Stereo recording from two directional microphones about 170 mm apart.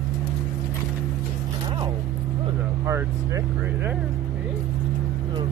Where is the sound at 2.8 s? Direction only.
15° right (ahead or behind).